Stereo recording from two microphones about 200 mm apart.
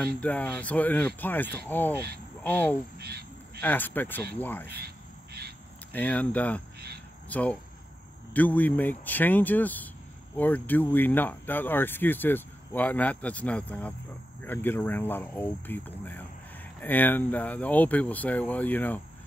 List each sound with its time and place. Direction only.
0.2 s speech: 5° left (ahead or behind)
3.0 s a sound: 50° right (ahead or behind)
3.6 s speech: 10° left (ahead or behind)
4.8 s insect: 55° right (ahead or behind)
5.9 s speech: 10° left (ahead or behind)